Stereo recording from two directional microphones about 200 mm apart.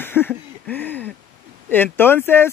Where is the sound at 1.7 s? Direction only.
10° left (ahead or behind).